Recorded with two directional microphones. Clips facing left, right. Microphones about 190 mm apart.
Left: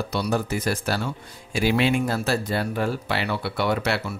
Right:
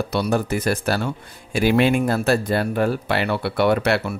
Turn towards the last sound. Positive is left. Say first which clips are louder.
# right 6 dB
turn(degrees=-55)  # may be behind; listen again after turning